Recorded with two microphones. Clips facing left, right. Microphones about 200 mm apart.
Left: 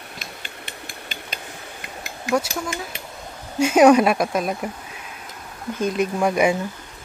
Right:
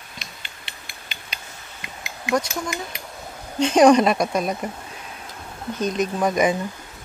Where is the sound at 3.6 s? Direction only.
10° left (ahead or behind).